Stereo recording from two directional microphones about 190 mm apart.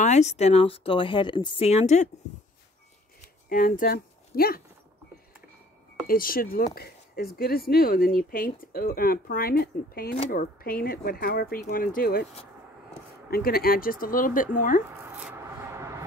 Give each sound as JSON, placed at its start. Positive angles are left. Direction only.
{"t": 0.0, "sound": "speech", "side_deg": 35}
{"t": 3.4, "sound": "speech", "side_deg": 50}
{"t": 6.0, "sound": "speech", "side_deg": 50}
{"t": 13.3, "sound": "speech", "side_deg": 50}
{"t": 15.0, "sound": "rub", "side_deg": -10}